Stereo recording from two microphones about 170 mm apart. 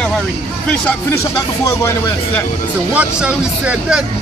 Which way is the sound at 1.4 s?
20° left (ahead or behind).